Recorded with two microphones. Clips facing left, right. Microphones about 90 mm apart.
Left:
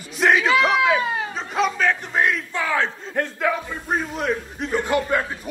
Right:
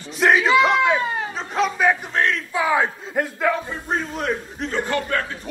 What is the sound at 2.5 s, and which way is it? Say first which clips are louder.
A man's voice: right 3 dB; 15° right (ahead or behind).